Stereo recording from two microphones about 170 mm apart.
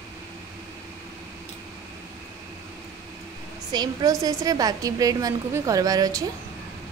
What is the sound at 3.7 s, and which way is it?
A woman's voice, 25° right (ahead or behind).